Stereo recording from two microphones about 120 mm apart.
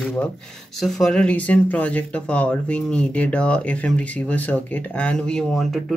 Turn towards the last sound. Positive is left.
turn(degrees=0)  # may be behind; listen again after turning